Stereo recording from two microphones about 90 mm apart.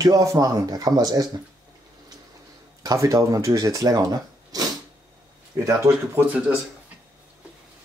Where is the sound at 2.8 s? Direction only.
40° right (ahead or behind).